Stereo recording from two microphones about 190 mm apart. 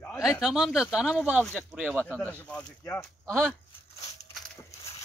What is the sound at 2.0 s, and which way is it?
Speech, 10° left (ahead or behind).